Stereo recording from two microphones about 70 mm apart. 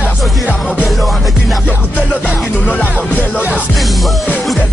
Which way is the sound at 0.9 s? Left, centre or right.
Centre.